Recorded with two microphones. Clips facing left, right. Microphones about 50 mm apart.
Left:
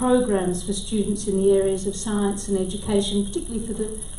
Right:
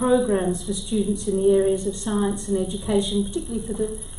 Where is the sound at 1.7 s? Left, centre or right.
Centre.